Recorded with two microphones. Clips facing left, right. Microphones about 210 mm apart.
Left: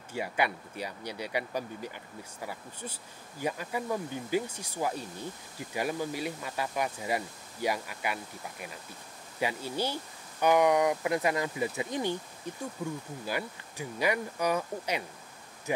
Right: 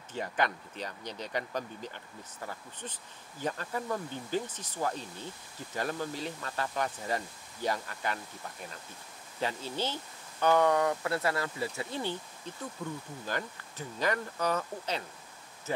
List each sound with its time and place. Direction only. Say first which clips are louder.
0.1 s speech: left 1 dB; 10° left (ahead or behind)